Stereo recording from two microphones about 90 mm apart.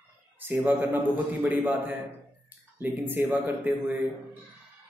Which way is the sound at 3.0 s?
20° right (ahead or behind).